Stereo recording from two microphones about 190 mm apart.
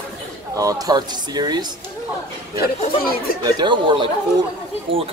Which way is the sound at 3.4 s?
25° right (ahead or behind).